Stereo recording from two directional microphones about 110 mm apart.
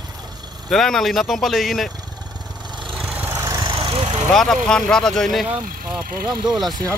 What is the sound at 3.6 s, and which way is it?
Vehicle, 50° right (ahead or behind).